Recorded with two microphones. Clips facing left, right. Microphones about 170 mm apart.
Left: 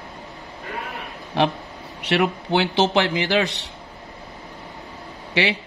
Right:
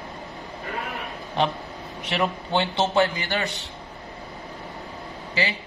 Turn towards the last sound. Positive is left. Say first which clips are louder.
# left 5 dB
turn(degrees=85)